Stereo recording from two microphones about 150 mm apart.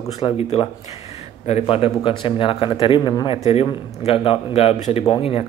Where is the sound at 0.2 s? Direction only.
40° left (ahead or behind).